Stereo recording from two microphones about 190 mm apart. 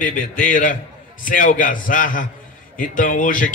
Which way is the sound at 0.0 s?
45° left (ahead or behind).